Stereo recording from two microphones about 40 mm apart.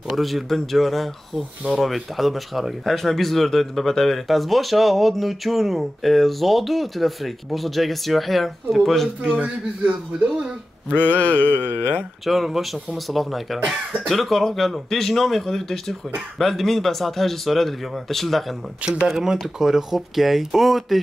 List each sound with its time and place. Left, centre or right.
0.1 s speech: centre
9.4 s a man's voice: right
11.0 s mantra: left
12.3 s speech: centre
19.0 s speech: centre